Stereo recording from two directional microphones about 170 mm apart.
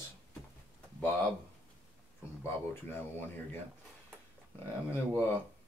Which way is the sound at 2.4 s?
10° left (ahead or behind).